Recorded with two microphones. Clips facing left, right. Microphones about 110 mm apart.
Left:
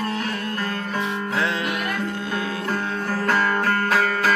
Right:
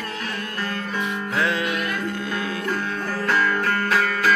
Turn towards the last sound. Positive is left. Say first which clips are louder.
# even
turn(degrees=40)  # may be behind; listen again after turning